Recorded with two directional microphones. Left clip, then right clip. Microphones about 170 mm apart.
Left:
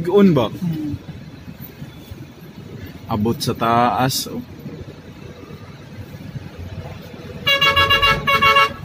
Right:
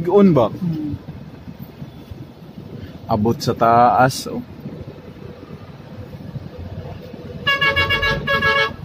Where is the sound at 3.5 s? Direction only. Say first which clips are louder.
Right 4 dB; 5° right (ahead or behind).